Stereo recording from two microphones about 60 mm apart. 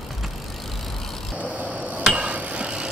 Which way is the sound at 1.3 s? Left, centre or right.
Right.